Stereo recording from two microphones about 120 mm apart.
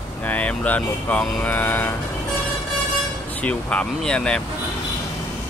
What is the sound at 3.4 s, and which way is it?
Speech, 10° left (ahead or behind).